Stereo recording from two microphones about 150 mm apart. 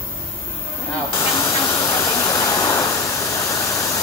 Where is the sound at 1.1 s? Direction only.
20° left (ahead or behind).